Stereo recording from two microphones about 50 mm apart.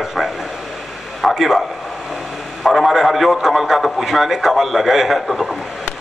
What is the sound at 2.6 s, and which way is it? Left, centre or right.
A man's voice, centre.